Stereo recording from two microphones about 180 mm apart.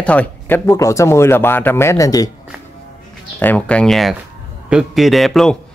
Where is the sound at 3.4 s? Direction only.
10° left (ahead or behind).